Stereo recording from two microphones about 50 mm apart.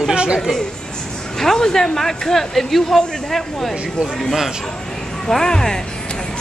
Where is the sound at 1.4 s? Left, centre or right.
Centre.